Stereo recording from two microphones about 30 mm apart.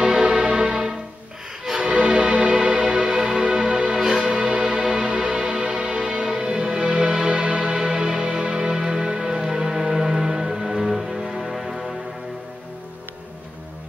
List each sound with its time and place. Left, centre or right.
0.0 s music: right
2.8 s music: centre; by 7.7 s right
7.7 s music: right; by 11.9 s centre